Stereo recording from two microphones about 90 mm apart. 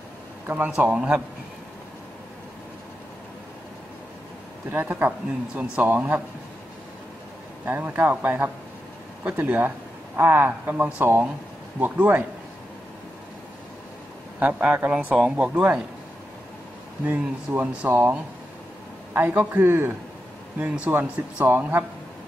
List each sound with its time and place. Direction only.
0.9 s speech: 10° right (ahead or behind)
4.6 s speech: 15° right (ahead or behind)
7.6 s a man's voice: 20° right (ahead or behind)
14.4 s speech: 15° right (ahead or behind)
17.0 s a man's voice: 20° right (ahead or behind)